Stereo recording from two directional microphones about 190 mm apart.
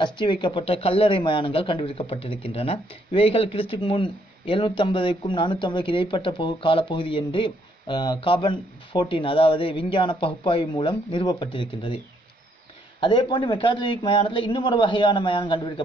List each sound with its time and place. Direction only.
0.0 s a woman's voice: 25° left (ahead or behind)
13.0 s a woman's voice: 25° left (ahead or behind)